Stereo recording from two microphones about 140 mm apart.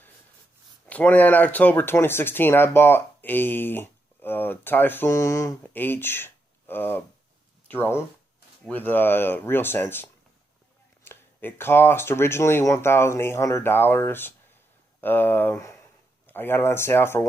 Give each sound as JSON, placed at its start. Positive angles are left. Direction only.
{"t": 0.8, "sound": "speech", "side_deg": 10}